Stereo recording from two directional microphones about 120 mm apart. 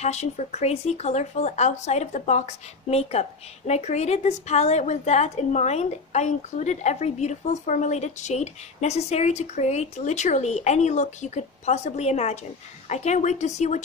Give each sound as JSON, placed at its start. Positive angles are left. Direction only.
{"t": 0.0, "sound": "speech", "side_deg": 65}